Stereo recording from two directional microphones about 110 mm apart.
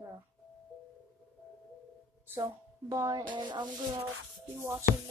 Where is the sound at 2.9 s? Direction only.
30° right (ahead or behind).